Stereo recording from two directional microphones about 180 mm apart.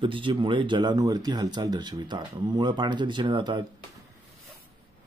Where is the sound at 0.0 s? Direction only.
30° right (ahead or behind).